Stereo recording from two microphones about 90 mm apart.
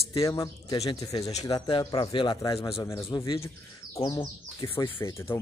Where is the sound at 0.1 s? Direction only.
40° left (ahead or behind).